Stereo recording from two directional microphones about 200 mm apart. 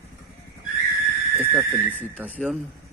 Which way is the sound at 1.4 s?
10° right (ahead or behind).